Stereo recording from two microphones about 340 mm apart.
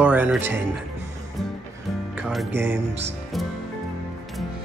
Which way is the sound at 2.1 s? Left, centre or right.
Centre.